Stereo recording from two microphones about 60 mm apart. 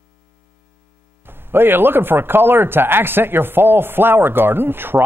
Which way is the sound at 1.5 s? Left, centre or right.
Right.